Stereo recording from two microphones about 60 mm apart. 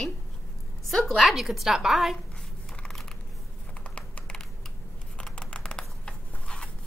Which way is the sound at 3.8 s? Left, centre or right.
Left.